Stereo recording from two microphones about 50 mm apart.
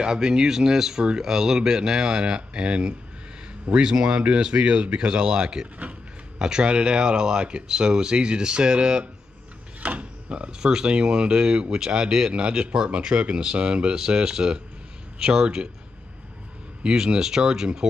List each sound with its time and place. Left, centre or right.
0.0 s speech: centre
16.8 s speech: centre